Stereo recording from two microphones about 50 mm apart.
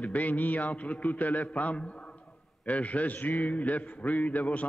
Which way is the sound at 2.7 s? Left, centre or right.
Left.